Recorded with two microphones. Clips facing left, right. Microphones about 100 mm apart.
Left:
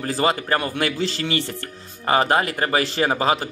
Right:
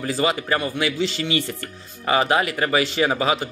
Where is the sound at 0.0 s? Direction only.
40° left (ahead or behind).